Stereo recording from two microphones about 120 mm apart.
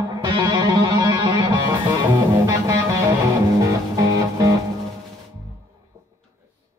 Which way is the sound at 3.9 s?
30° right (ahead or behind).